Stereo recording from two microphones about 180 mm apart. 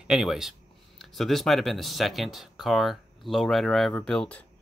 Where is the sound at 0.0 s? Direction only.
Centre (ahead or behind).